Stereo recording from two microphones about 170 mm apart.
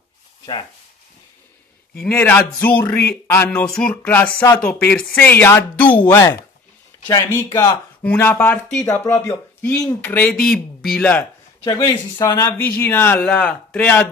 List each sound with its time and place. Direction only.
2.0 s speech: 10° left (ahead or behind)
6.9 s a sound: 20° left (ahead or behind)
7.3 s speech: 20° left (ahead or behind)
8.8 s speech: 15° left (ahead or behind)
11.6 s speech: 20° left (ahead or behind)